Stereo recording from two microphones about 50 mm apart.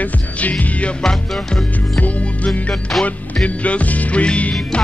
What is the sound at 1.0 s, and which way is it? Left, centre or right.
Music, centre.